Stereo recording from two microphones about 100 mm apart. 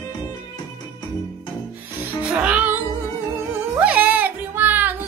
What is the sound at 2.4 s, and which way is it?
Music, 15° right (ahead or behind).